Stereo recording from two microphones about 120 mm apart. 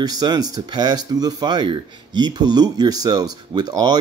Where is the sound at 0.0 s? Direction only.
35° right (ahead or behind).